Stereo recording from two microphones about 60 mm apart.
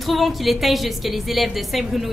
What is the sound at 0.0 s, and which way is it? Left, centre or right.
A woman's voice, centre.